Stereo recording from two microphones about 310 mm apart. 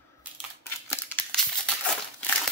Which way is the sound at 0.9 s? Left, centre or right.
Centre.